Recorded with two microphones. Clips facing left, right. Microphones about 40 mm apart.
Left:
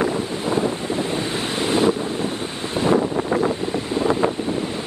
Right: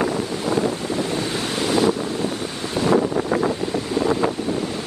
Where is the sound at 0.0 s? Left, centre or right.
Left.